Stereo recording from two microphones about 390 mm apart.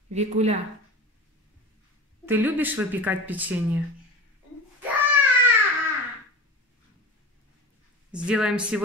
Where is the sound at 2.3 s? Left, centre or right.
Centre.